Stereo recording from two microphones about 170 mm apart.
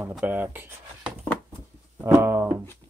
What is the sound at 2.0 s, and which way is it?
Music, 15° right (ahead or behind).